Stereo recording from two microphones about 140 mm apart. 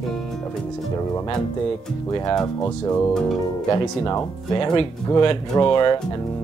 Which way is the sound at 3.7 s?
25° left (ahead or behind).